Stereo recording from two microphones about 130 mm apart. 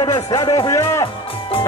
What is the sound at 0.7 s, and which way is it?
Speech, 20° left (ahead or behind).